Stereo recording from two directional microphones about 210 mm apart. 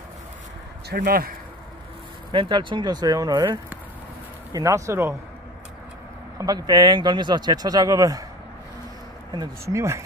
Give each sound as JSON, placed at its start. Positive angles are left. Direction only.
{"t": 0.8, "sound": "speech", "side_deg": -50}
{"t": 2.3, "sound": "speech", "side_deg": -25}
{"t": 6.3, "sound": "speech", "side_deg": -15}
{"t": 9.3, "sound": "speech", "side_deg": -15}